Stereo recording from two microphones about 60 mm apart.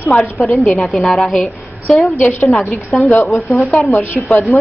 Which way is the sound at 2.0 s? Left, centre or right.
Left.